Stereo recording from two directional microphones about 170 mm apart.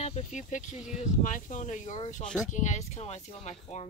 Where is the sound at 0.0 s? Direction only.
40° left (ahead or behind).